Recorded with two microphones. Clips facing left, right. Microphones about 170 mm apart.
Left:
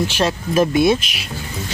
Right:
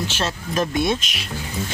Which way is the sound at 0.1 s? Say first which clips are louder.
Left 6 dB; 10° left (ahead or behind).